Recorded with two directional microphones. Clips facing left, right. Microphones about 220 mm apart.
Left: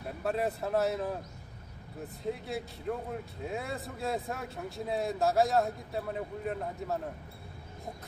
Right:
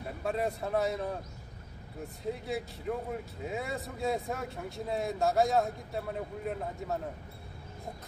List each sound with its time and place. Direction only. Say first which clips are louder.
0.2 s speech: left 1 dB; centre (ahead or behind)
2.2 s speech: right 1 dB; centre (ahead or behind)